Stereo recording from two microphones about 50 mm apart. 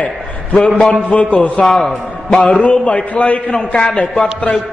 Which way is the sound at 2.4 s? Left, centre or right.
Left.